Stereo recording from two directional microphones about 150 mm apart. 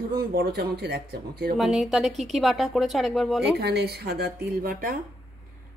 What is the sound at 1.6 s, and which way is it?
Speech, centre (ahead or behind).